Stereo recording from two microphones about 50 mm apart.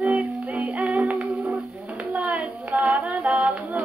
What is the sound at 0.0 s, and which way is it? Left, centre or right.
Music, right.